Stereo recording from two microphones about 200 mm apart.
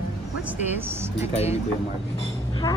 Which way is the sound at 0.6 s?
10° right (ahead or behind).